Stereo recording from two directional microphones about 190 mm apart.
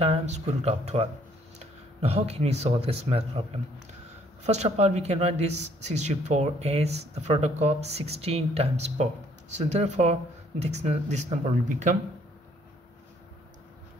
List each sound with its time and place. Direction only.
0.0 s speech: 35° right (ahead or behind)